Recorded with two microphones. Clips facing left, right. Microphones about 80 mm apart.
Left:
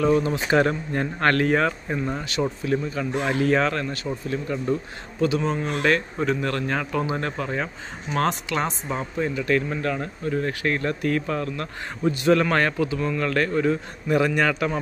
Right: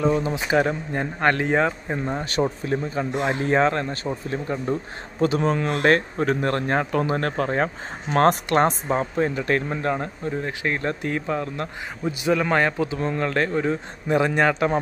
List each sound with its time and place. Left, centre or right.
0.0 s speech: centre
2.6 s speech: right
5.2 s speech: right
8.8 s speech: right
12.1 s speech: centre